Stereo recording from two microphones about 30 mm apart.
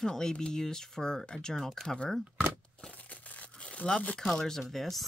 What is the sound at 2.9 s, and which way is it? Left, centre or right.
Crushing, left.